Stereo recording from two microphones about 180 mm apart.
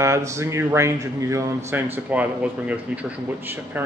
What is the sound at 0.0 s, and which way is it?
Speech, 15° right (ahead or behind).